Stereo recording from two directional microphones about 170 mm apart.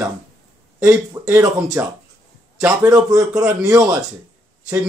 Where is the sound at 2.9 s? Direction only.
20° right (ahead or behind).